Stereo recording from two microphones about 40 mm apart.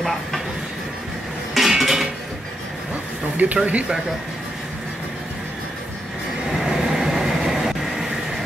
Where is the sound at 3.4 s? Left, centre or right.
Right.